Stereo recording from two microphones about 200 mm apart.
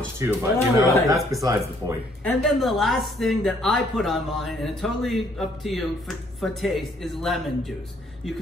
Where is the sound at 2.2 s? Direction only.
Centre (ahead or behind).